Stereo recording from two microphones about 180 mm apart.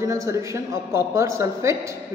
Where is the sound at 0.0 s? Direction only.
15° right (ahead or behind).